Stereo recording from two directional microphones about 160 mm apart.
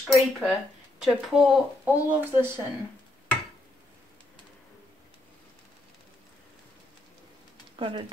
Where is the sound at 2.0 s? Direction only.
15° right (ahead or behind).